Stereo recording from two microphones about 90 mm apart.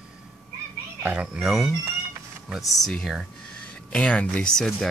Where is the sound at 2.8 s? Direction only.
Centre (ahead or behind).